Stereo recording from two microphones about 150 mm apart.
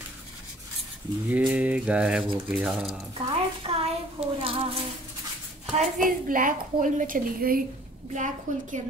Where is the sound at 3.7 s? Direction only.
35° right (ahead or behind).